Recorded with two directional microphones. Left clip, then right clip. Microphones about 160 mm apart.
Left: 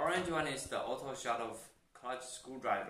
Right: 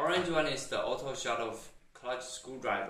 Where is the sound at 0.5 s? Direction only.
25° left (ahead or behind).